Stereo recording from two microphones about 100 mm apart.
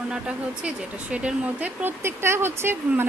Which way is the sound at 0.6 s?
10° right (ahead or behind).